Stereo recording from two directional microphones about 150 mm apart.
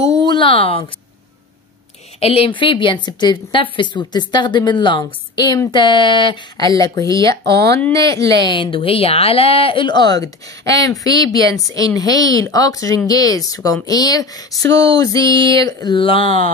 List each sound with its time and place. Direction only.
0.0 s speech: 25° left (ahead or behind)
2.1 s a woman's voice: 40° left (ahead or behind); by 15.2 s 25° left (ahead or behind)
15.2 s speech: 35° right (ahead or behind)
15.5 s a woman's voice: 25° left (ahead or behind)